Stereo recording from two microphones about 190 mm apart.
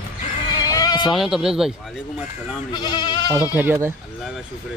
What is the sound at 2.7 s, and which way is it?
Speech, 25° left (ahead or behind).